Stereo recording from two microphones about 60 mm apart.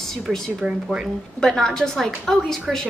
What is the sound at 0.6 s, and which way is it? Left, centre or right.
Speech, centre.